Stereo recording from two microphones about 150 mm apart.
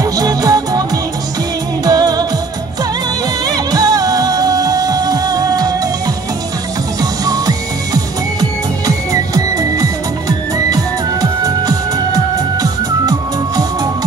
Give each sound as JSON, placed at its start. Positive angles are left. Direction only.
{"t": 0.0, "sound": "music", "side_deg": -25}
{"t": 1.9, "sound": "music", "side_deg": -25}
{"t": 3.4, "sound": "music", "side_deg": -25}
{"t": 7.0, "sound": "music", "side_deg": -25}